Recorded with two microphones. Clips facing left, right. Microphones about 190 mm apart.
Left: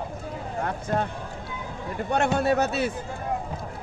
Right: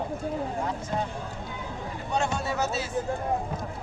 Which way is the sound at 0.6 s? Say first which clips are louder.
Left 3 dB; 60° left (ahead or behind).